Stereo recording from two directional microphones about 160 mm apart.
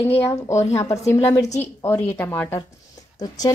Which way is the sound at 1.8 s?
15° left (ahead or behind).